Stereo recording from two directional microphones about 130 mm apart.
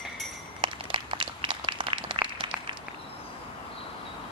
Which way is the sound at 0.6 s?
40° right (ahead or behind).